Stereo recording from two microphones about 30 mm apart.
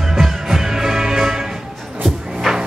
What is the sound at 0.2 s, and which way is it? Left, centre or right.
Music, centre.